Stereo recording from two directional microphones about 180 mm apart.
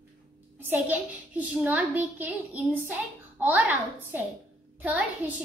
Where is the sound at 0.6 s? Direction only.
10° right (ahead or behind).